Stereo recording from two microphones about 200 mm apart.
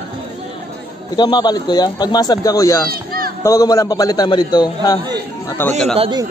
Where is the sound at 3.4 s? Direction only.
15° left (ahead or behind).